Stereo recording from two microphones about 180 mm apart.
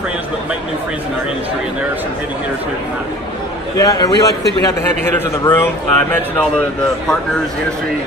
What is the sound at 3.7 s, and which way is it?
A man's voice, 20° left (ahead or behind).